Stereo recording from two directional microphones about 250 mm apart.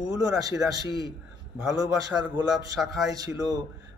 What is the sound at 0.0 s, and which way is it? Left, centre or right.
Speech, centre.